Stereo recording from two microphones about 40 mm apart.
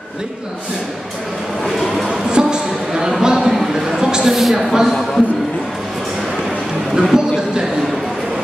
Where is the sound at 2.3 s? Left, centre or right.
Centre.